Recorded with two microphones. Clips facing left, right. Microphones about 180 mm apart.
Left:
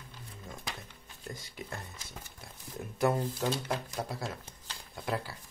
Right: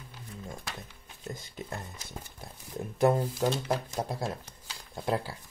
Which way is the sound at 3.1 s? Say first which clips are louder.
Right 4 dB; 25° right (ahead or behind).